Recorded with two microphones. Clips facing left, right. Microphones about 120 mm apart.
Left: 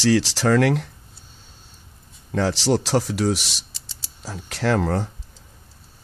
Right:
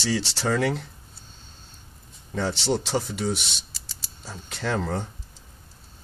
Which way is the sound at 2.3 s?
90° left.